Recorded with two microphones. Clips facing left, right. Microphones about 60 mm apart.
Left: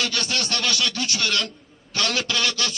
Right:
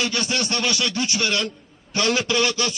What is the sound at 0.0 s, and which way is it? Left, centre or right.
A man's voice, right.